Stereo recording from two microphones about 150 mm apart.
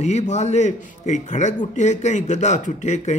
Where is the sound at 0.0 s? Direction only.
50° left (ahead or behind).